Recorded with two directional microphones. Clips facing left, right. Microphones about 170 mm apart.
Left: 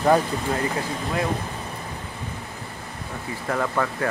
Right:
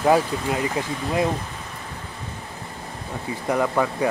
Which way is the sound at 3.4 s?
15° right (ahead or behind).